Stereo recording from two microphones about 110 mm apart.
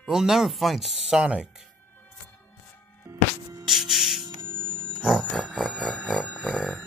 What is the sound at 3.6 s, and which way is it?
Music, 5° right (ahead or behind).